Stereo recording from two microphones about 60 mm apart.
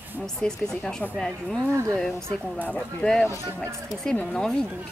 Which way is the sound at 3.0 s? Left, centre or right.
Left.